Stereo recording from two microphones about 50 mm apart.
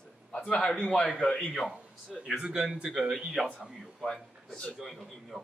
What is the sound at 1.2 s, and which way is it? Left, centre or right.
Speech, left.